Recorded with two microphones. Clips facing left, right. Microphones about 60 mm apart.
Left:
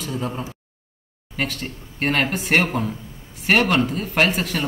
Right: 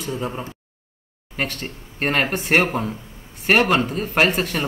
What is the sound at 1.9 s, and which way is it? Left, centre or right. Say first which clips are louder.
Speech: even; centre.